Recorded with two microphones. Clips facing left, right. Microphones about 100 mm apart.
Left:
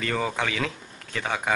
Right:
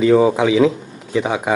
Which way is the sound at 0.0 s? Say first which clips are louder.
Right 14 dB; 10° right (ahead or behind).